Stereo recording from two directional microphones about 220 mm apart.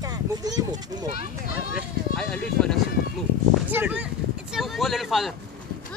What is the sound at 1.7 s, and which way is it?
Speech, 5° left (ahead or behind).